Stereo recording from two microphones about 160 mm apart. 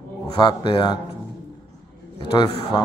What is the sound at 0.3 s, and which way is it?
Speech, 30° left (ahead or behind).